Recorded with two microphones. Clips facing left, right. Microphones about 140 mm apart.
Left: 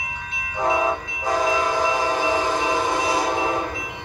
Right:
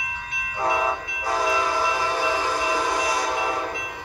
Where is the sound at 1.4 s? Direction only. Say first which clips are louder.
Left 1 dB; 20° left (ahead or behind).